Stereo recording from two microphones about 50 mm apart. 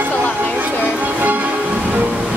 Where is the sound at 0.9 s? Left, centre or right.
Right.